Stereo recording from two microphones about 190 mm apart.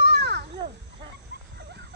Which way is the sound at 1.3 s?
60° right (ahead or behind).